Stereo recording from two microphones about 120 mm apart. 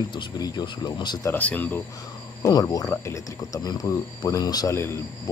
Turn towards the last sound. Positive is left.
turn(degrees=20)  # may be behind; listen again after turning